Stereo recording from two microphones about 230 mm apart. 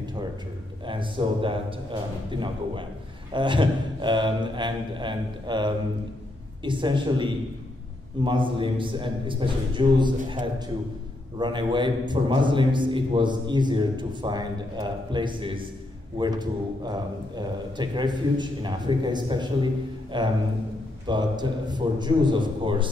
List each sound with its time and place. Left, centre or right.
0.8 s a man's voice: right
3.3 s a man's voice: right